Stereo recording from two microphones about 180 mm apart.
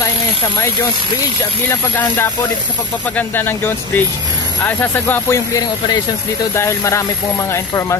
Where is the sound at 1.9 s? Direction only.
10° left (ahead or behind).